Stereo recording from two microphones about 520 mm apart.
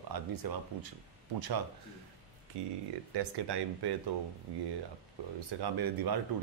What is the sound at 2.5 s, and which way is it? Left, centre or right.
Speech, right.